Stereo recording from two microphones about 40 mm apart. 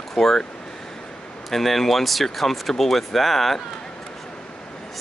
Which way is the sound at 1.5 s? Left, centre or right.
Centre.